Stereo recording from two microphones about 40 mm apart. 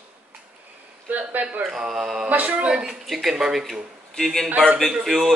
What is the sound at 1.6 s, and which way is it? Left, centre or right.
Speech, centre.